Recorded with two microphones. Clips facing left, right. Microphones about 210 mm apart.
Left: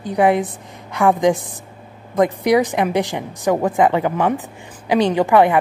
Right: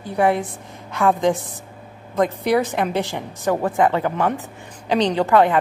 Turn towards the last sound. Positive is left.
turn(degrees=15)  # may be behind; listen again after turning